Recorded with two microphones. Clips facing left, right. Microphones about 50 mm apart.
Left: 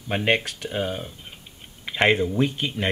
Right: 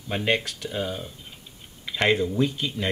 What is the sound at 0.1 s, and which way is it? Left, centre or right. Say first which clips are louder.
Speech: left 2 dB; left.